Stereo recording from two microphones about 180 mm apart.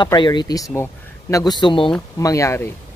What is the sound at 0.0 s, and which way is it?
Speech, 25° left (ahead or behind).